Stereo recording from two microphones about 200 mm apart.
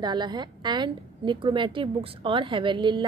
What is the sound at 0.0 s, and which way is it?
A woman's voice, 20° right (ahead or behind).